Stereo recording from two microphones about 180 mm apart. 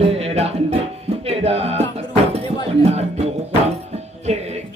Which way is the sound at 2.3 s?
35° right (ahead or behind).